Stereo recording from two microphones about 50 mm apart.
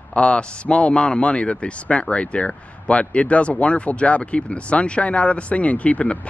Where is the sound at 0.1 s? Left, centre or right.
Centre.